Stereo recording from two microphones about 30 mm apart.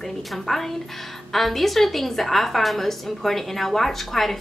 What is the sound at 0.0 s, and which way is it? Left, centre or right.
A woman's voice, centre.